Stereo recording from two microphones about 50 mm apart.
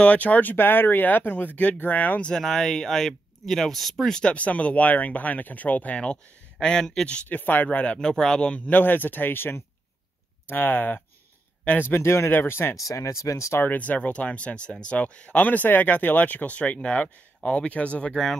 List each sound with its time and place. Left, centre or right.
0.0 s speech: left
2.2 s speech: centre
4.1 s speech: left
6.6 s speech: centre
7.2 s speech: left
8.1 s speech: centre; by 11.0 s left
11.8 s speech: left
12.3 s speech: left
12.9 s speech: left
13.7 s speech: left
15.4 s speech: left
18.1 s speech: centre